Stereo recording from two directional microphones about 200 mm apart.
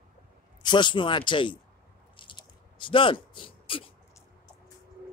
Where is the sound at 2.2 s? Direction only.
25° left (ahead or behind).